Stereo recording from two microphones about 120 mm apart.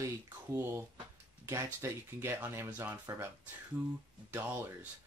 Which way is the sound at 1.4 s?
25° right (ahead or behind).